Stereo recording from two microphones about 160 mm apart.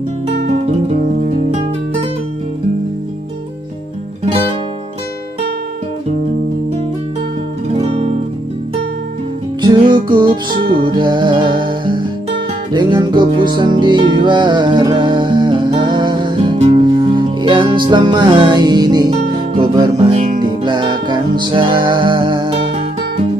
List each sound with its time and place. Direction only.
0.5 s guitar: 40° right (ahead or behind)
7.7 s music: 35° right (ahead or behind)
9.6 s music: 30° right (ahead or behind)